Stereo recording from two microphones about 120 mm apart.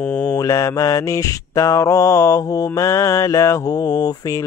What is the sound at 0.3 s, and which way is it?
Mantra, 25° left (ahead or behind).